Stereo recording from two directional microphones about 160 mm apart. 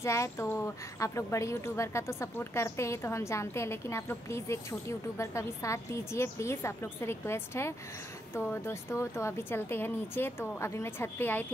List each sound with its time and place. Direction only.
0.0 s a woman's voice: 20° left (ahead or behind)